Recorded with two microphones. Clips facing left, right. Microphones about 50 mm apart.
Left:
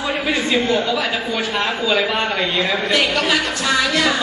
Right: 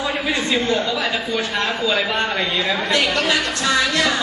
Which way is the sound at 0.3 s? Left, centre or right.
Centre.